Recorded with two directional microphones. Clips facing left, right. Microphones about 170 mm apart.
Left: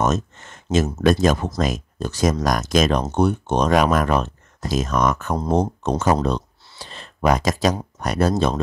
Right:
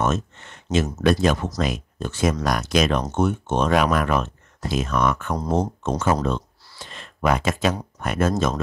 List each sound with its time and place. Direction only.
0.0 s speech: 40° left (ahead or behind)
5.3 s speech: 25° left (ahead or behind)
6.2 s a sound: 35° left (ahead or behind)
8.0 s speech: 35° left (ahead or behind)